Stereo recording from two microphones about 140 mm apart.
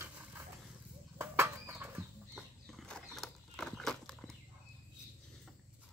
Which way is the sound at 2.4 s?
Centre (ahead or behind).